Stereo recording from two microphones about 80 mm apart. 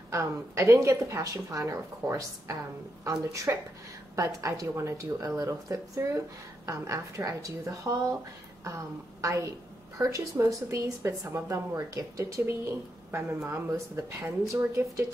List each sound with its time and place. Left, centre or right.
0.1 s a woman's voice: right